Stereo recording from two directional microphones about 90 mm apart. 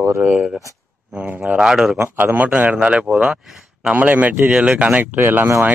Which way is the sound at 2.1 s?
20° right (ahead or behind).